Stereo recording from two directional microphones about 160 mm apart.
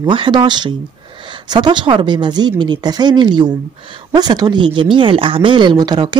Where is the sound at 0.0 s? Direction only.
30° right (ahead or behind).